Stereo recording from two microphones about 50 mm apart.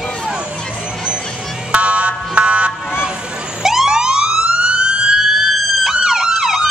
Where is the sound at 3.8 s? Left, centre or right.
Centre.